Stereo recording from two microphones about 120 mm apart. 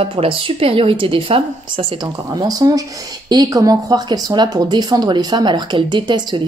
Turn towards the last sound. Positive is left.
turn(degrees=-40)  # may be behind; listen again after turning